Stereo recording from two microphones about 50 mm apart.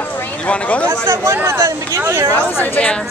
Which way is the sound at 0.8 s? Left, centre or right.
Right.